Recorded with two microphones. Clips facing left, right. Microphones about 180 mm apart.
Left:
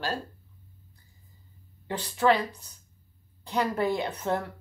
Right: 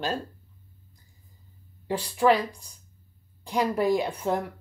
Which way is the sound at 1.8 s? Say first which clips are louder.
Right 2 dB; 10° right (ahead or behind).